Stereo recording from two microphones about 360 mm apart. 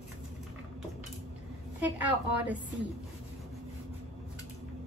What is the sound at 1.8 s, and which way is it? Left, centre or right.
Speech, centre.